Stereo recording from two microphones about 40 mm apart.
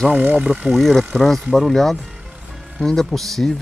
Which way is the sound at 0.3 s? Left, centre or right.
Right.